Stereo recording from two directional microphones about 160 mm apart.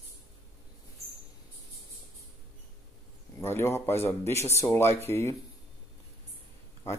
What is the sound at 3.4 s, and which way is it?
Speech, 15° left (ahead or behind).